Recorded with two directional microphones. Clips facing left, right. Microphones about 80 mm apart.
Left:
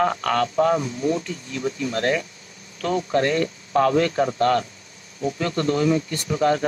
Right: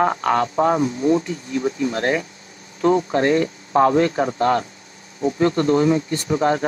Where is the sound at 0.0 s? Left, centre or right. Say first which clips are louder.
Right 3 dB; right.